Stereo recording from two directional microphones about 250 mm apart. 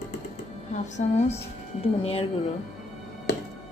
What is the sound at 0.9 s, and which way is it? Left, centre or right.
Speech, left.